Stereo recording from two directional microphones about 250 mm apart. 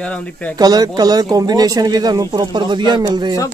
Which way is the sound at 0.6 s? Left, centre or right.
Centre.